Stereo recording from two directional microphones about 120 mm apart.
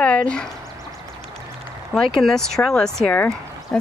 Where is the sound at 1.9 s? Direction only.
5° left (ahead or behind).